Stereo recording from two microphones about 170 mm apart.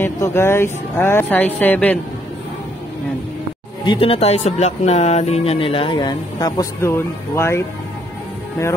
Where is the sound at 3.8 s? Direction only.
30° left (ahead or behind).